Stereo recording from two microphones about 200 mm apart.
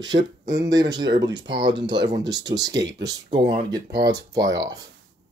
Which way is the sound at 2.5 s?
60° right (ahead or behind).